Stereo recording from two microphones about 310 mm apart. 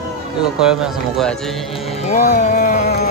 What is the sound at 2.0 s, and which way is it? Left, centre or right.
Music, left.